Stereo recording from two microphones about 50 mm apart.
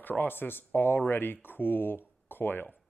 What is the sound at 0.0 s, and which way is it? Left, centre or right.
Speech, left.